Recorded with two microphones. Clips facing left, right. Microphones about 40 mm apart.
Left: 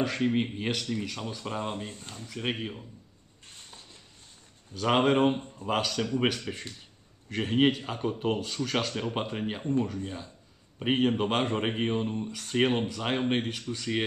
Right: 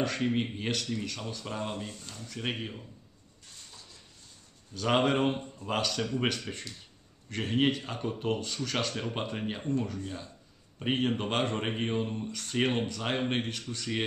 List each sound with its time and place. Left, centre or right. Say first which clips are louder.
0.0 s speech: left 2 dB; centre; by 2.2 s left
2.2 s a man's voice: left 3 dB; centre
3.4 s a sound: left 2 dB; left
4.7 s speech: left 3 dB; centre
10.8 s speech: left 4 dB; centre